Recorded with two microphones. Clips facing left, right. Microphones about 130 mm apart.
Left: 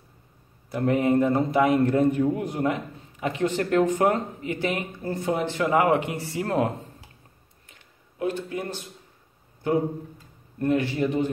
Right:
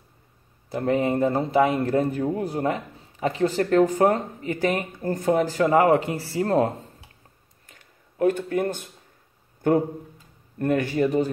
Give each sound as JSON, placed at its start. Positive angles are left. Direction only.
{"t": 0.7, "sound": "a man's voice", "side_deg": -30}
{"t": 7.6, "sound": "a sound", "side_deg": -45}
{"t": 9.6, "sound": "speech", "side_deg": -50}